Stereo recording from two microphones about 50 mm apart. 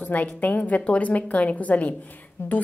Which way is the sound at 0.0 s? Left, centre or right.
Left.